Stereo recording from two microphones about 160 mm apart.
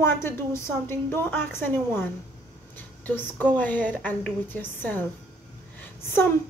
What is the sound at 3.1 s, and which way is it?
A woman's voice, 10° left (ahead or behind).